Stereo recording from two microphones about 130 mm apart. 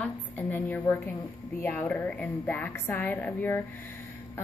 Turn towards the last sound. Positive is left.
turn(degrees=15)  # may be behind; listen again after turning